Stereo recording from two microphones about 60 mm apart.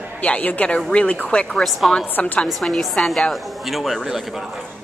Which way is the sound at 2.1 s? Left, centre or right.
Left.